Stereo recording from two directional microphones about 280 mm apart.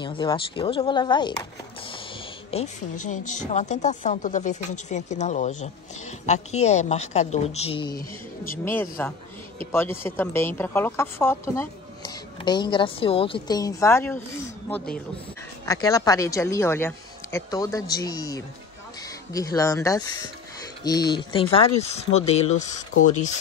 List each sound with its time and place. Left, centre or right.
0.0 s speech: centre
2.5 s a woman's voice: left; by 14.2 s centre
15.6 s speech: centre